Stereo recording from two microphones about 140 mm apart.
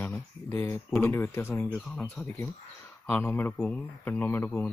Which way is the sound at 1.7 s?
5° left (ahead or behind).